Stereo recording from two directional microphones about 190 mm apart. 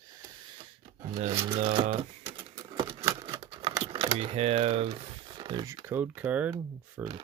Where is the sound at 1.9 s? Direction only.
30° right (ahead or behind).